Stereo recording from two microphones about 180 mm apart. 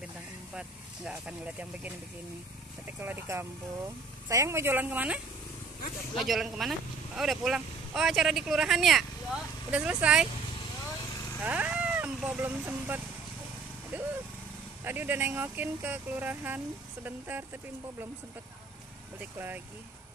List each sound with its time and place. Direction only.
0.6 s speech: 5° right (ahead or behind)
3.0 s speech: 10° right (ahead or behind)
11.4 s speech: 10° right (ahead or behind)
13.9 s vehicle: 10° right (ahead or behind)
14.9 s speech: 10° right (ahead or behind)
19.3 s speech: 10° right (ahead or behind)